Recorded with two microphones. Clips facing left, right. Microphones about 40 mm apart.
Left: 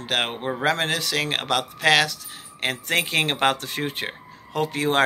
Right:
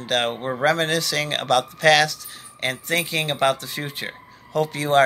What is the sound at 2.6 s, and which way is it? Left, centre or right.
Speech, left.